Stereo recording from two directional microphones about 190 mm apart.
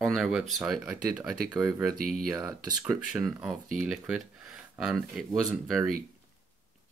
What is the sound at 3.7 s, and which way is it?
Speech, 5° right (ahead or behind).